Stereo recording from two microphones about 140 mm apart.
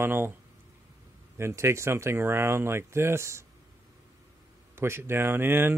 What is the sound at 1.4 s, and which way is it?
Speech, 20° right (ahead or behind).